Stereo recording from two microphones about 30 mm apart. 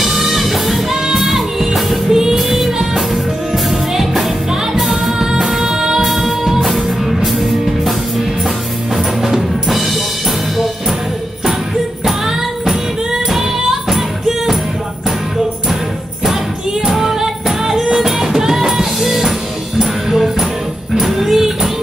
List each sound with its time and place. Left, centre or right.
0.0 s music: centre
2.0 s music: centre
2.3 s music: centre
5.8 s music: centre
6.0 s music: centre
8.9 s music: centre
12.0 s music: centre
14.2 s music: centre
16.9 s music: centre